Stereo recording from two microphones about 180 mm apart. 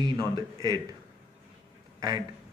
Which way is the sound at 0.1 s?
25° right (ahead or behind).